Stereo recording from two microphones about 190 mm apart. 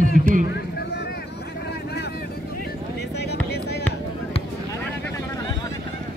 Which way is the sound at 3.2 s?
60° left (ahead or behind).